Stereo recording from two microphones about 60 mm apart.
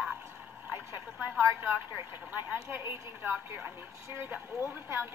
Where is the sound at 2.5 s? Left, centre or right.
Right.